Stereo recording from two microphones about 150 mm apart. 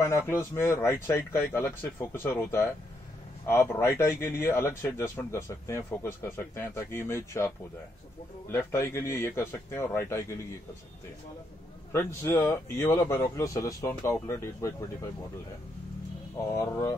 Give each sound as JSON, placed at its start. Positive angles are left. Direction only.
{"t": 0.3, "sound": "a man's voice", "side_deg": 20}
{"t": 11.9, "sound": "a man's voice", "side_deg": 20}
{"t": 16.5, "sound": "a man's voice", "side_deg": 20}